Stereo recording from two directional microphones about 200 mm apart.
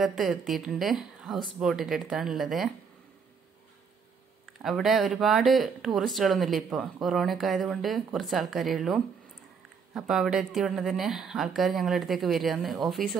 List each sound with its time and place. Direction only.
0.0 s a woman's voice: centre (ahead or behind)
4.6 s a woman's voice: centre (ahead or behind)